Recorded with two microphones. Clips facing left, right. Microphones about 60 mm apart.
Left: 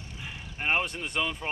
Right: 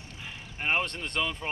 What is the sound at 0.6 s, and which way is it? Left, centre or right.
Speech, centre.